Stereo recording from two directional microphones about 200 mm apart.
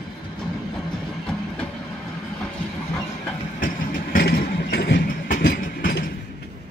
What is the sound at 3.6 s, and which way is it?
Vehicle, 45° left (ahead or behind).